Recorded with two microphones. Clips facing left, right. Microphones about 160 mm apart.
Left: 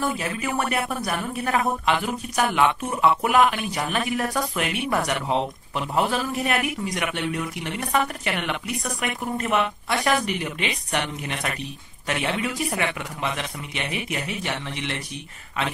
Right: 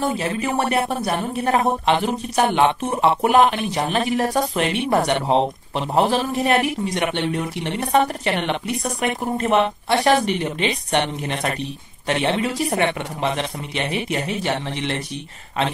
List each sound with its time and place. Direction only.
0.0 s speech: 30° right (ahead or behind)